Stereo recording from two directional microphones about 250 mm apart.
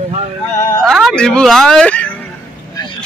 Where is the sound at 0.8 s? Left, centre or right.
Centre.